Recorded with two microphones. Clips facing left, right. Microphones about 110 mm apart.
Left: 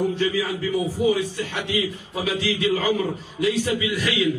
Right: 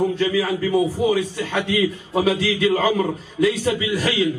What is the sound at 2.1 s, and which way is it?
A man's voice, 45° right (ahead or behind).